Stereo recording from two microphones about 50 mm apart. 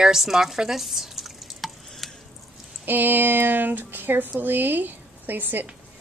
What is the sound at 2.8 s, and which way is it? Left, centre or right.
A woman's voice, right.